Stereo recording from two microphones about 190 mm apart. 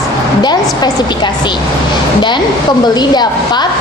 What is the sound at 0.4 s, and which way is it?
A woman's voice, 20° left (ahead or behind).